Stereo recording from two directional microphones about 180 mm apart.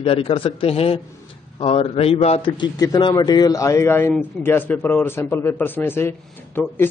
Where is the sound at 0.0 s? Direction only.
30° left (ahead or behind).